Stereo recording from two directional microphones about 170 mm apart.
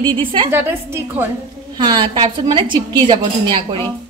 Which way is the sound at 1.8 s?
25° right (ahead or behind).